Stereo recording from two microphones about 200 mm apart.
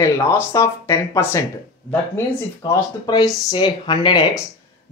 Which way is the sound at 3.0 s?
20° left (ahead or behind).